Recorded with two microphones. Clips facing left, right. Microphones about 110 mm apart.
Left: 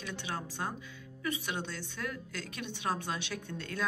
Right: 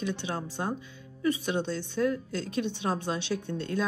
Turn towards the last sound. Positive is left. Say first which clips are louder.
# right 6 dB
turn(degrees=-25)  # may be behind; listen again after turning